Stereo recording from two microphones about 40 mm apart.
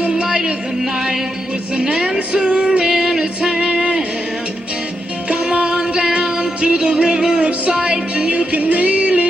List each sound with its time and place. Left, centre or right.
0.0 s music: right
2.1 s music: right
3.5 s music: right
5.3 s music: right
7.3 s speech: right
7.8 s music: right